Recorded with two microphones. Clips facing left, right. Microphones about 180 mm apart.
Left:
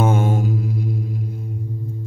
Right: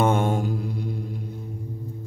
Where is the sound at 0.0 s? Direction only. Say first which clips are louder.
Left 2 dB; 5° left (ahead or behind).